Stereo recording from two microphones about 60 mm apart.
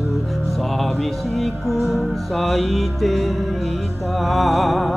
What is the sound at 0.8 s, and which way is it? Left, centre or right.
Music, centre.